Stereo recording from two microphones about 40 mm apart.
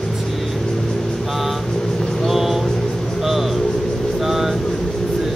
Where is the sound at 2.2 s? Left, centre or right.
Centre.